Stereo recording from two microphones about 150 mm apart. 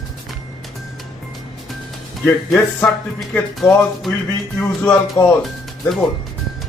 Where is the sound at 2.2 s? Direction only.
10° left (ahead or behind).